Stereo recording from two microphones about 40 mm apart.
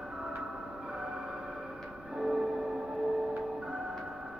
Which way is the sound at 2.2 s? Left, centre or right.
Centre.